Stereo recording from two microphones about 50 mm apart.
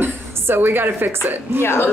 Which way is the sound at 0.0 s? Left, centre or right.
Right.